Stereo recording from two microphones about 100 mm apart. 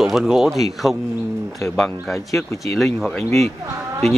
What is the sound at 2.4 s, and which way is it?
Speech, 35° left (ahead or behind).